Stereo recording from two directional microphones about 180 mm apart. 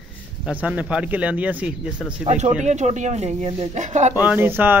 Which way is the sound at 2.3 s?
40° right (ahead or behind).